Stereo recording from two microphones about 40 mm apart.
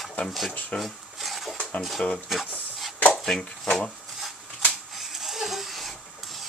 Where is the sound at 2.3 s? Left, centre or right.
Centre.